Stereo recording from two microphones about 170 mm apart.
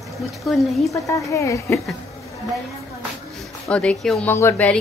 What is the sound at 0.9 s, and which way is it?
Speech, 20° left (ahead or behind).